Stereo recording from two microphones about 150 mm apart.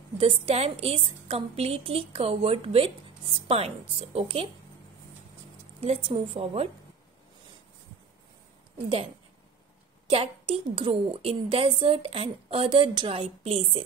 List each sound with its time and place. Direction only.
0.2 s a woman's voice: 40° right (ahead or behind)
5.8 s a woman's voice: 40° right (ahead or behind)
8.7 s a woman's voice: 40° right (ahead or behind)